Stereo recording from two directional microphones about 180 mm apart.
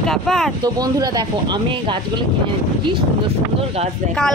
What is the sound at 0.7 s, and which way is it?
Speech, 20° right (ahead or behind).